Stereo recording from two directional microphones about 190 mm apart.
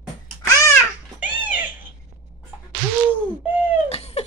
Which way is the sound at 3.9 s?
35° left (ahead or behind).